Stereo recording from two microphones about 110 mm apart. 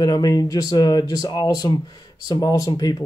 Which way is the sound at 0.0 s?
35° left (ahead or behind).